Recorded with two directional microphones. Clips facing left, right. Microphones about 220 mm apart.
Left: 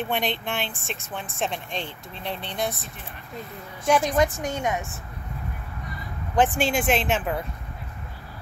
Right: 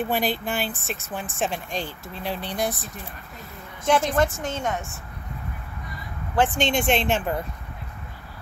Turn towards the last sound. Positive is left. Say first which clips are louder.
# right 1 dB
turn(degrees=0)  # may be behind; listen again after turning